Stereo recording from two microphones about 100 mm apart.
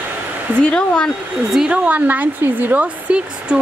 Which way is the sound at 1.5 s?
5° right (ahead or behind).